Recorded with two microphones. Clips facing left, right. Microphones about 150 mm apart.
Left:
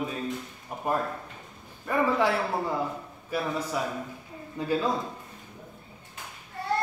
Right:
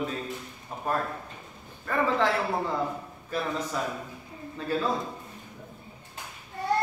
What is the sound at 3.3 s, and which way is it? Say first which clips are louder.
Speech: left 1 dB; 10° left (ahead or behind).